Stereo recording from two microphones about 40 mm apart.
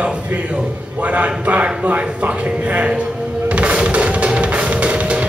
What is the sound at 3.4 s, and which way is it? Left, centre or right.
Music, right.